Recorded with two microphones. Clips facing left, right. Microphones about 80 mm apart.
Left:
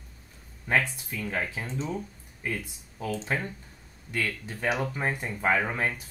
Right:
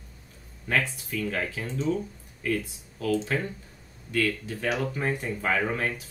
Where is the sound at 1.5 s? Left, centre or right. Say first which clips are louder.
Right 2 dB; left.